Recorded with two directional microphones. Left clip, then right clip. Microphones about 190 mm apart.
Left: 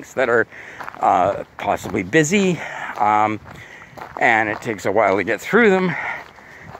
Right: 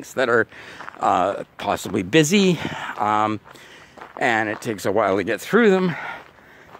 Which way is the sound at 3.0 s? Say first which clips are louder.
Left 4 dB; 45° right (ahead or behind).